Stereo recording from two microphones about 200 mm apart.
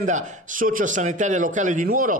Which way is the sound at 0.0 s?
40° right (ahead or behind).